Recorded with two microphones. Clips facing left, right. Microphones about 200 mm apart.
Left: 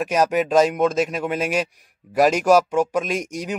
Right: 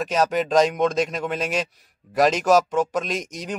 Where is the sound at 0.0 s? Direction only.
10° left (ahead or behind).